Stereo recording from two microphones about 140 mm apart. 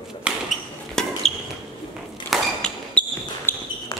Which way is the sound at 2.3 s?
5° left (ahead or behind).